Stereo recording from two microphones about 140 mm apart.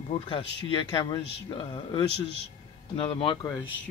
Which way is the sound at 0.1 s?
35° left (ahead or behind).